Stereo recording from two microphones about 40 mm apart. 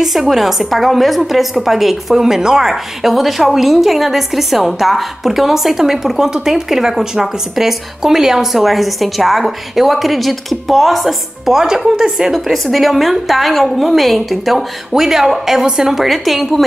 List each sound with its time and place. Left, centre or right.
0.3 s a woman's voice: centre
15.9 s a woman's voice: centre